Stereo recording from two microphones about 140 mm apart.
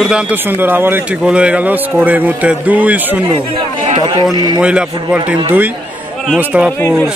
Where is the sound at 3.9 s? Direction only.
35° right (ahead or behind).